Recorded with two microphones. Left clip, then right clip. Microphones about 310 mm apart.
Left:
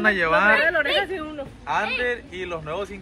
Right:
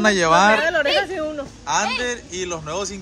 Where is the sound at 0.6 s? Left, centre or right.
Right.